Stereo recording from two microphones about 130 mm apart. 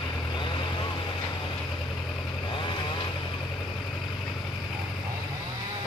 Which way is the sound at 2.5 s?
40° left (ahead or behind).